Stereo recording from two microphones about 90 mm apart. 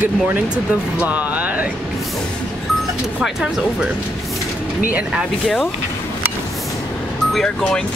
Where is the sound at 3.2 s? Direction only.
10° right (ahead or behind).